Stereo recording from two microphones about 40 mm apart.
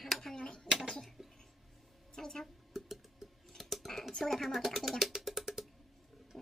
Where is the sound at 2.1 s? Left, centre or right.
Centre.